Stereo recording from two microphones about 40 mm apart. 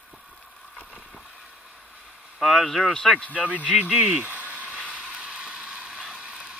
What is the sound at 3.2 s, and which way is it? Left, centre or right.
Speech, left.